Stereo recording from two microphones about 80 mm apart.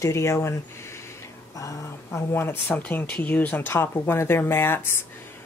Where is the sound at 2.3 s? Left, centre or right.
Left.